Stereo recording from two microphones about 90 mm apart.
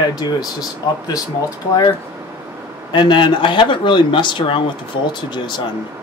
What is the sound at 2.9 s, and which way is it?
Speech, 60° left (ahead or behind).